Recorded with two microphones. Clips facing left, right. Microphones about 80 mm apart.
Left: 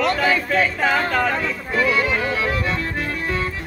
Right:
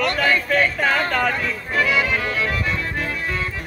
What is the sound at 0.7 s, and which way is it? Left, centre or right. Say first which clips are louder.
Speech: left 1 dB; centre.